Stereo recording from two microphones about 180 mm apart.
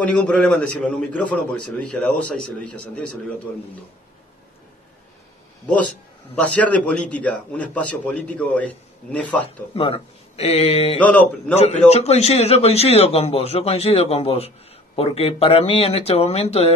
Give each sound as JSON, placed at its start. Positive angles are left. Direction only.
{"t": 0.0, "sound": "a man's voice", "side_deg": 5}
{"t": 6.3, "sound": "a man's voice", "side_deg": 5}
{"t": 9.8, "sound": "a man's voice", "side_deg": 30}
{"t": 11.1, "sound": "a man's voice", "side_deg": 10}
{"t": 11.5, "sound": "a man's voice", "side_deg": 35}